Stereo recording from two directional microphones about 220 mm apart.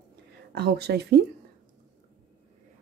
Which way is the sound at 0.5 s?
45° right (ahead or behind).